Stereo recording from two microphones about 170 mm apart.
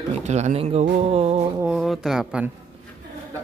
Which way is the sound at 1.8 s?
Centre (ahead or behind).